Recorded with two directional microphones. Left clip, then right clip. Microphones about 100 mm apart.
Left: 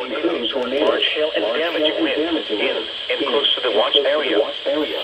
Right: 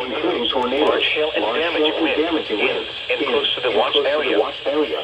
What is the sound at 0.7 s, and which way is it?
Speech, 5° left (ahead or behind).